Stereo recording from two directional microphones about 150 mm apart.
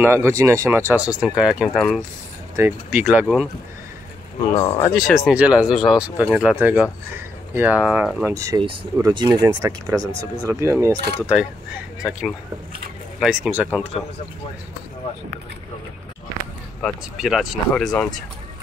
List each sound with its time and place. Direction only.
0.0 s speech: 15° right (ahead or behind); by 2.0 s centre (ahead or behind)
2.5 s speech: 15° right (ahead or behind)
4.6 s speech: 15° left (ahead or behind)
4.9 s speech: centre (ahead or behind); by 11.0 s 20° right (ahead or behind)
11.1 s speech: 5° right (ahead or behind)
16.8 s speech: 5° right (ahead or behind)